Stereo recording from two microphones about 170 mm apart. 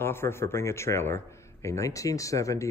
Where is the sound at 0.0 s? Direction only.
15° left (ahead or behind).